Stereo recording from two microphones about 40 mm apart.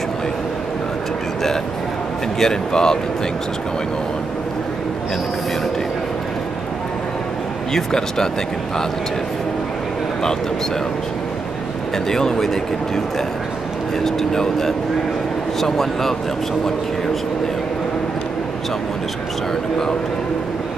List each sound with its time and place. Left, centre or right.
2.3 s speech: centre
7.7 s speech: centre
12.1 s speech: centre
14.0 s speech: centre